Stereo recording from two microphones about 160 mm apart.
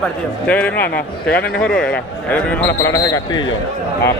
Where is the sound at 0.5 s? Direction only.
10° left (ahead or behind).